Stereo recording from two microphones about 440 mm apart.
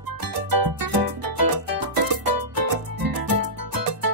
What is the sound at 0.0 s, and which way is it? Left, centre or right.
Music, right.